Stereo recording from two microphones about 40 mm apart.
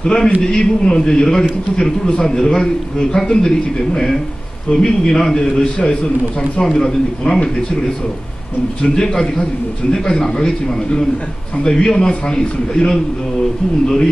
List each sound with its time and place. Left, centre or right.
0.0 s a man's voice: centre
8.8 s a man's voice: centre